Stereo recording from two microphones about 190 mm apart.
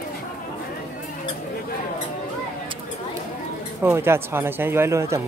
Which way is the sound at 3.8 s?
10° right (ahead or behind).